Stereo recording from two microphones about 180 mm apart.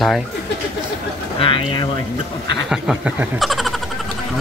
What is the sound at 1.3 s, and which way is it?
Speech, 30° left (ahead or behind).